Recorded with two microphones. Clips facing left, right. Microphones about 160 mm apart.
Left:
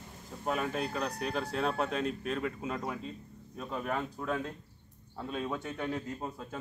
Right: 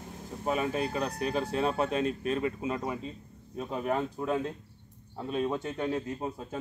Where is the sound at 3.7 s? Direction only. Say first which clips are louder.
Right 4 dB; 30° right (ahead or behind).